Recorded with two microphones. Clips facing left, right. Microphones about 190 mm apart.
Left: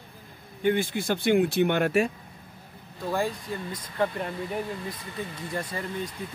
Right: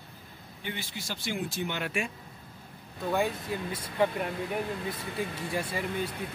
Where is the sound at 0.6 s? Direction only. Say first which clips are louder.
Left 14 dB; 50° left (ahead or behind).